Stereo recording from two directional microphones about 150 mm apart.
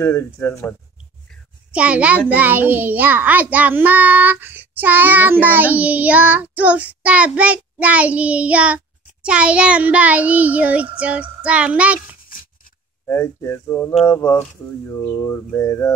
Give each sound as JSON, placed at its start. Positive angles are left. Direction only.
{"t": 0.0, "sound": "speech", "side_deg": 20}
{"t": 1.7, "sound": "a child's voice", "side_deg": -10}
{"t": 13.0, "sound": "speech", "side_deg": 15}